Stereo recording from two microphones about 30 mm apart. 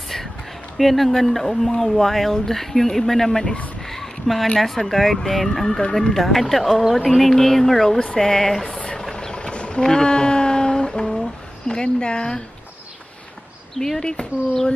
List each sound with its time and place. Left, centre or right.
0.7 s speech: centre
3.8 s a sound: centre
4.6 s speech: centre
8.6 s a sound: left
9.1 s vehicle: left
9.8 s music: left
11.6 s speech: left
13.9 s speech: left